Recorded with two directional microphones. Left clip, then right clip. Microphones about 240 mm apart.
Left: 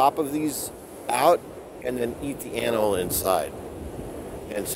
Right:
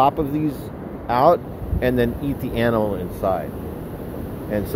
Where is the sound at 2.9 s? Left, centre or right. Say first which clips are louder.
Right 1 dB; left.